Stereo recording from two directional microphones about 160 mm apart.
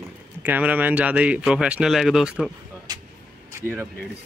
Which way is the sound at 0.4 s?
10° right (ahead or behind).